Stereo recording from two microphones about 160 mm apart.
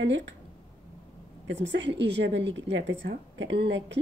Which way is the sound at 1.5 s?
90° right.